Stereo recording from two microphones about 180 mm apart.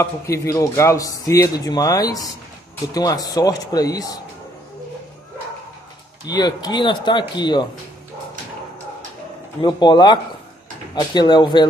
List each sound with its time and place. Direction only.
0.0 s speech: 15° left (ahead or behind)
6.2 s speech: 20° left (ahead or behind)
9.6 s speech: 25° left (ahead or behind)